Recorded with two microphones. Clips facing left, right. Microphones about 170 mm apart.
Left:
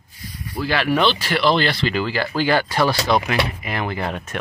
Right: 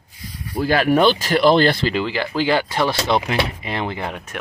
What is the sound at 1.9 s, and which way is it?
Speech, 20° right (ahead or behind).